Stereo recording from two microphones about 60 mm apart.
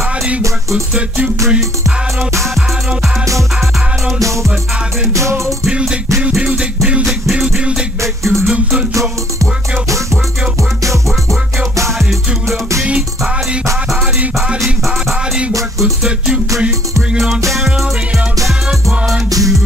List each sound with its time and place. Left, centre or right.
0.4 s music: right
0.9 s music: centre
5.7 s music: centre
6.3 s beatboxing: centre
7.1 s music: centre
8.0 s music: right
15.8 s music: centre
17.5 s music: centre